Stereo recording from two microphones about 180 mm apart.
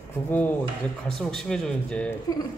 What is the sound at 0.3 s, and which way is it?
A man's voice, 10° left (ahead or behind).